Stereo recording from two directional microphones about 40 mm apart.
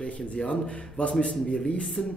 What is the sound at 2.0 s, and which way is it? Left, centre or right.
Speech, centre.